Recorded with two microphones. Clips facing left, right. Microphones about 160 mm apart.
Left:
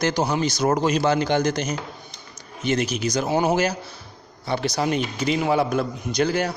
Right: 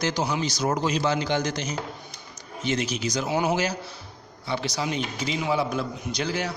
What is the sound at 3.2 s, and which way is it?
A man's voice, 40° left (ahead or behind).